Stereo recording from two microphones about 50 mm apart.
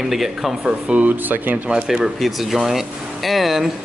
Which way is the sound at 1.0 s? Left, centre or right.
Right.